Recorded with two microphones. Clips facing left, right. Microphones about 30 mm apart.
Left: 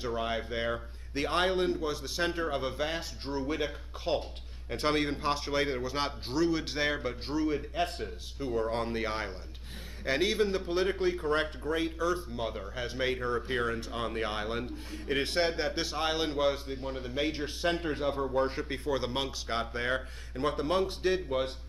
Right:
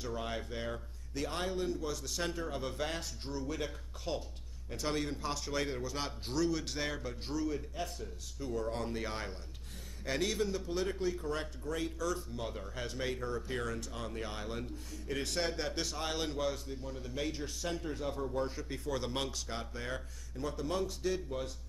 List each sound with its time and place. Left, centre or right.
0.0 s a man's voice: left
1.8 s a man's voice: left
2.7 s speech: left
3.3 s a man's voice: left
4.2 s a man's voice: left
8.4 s a man's voice: left
18.9 s speech: left
19.4 s a man's voice: left